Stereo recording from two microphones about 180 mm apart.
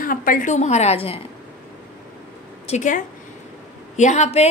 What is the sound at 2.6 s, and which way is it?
A woman's voice, 40° left (ahead or behind).